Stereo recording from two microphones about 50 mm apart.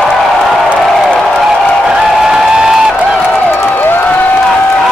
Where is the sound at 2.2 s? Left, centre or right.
Centre.